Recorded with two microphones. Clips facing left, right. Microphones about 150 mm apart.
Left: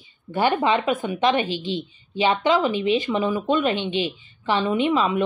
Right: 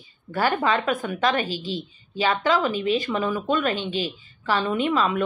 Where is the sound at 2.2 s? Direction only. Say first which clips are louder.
Left 2 dB; 20° left (ahead or behind).